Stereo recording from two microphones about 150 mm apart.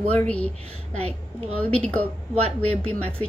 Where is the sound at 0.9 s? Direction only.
45° right (ahead or behind).